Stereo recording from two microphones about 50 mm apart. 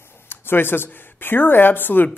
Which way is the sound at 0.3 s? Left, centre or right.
Left.